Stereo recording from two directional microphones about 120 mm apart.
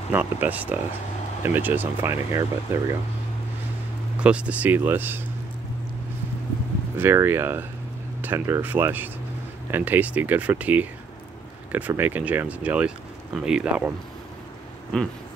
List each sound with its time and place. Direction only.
0.1 s speech: 15° right (ahead or behind)
4.2 s speech: 10° right (ahead or behind)
7.0 s speech: 20° right (ahead or behind)
11.9 s speech: 15° right (ahead or behind)